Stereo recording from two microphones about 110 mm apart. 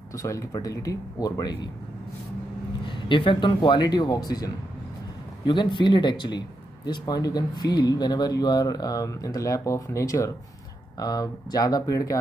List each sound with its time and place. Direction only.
0.1 s speech: 30° left (ahead or behind)
3.1 s speech: 50° left (ahead or behind); by 4.5 s 35° left (ahead or behind)
5.4 s speech: 45° left (ahead or behind)